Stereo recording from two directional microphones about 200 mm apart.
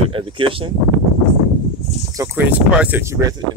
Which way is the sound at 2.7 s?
10° right (ahead or behind).